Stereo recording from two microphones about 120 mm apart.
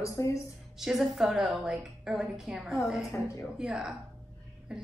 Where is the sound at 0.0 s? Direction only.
25° left (ahead or behind).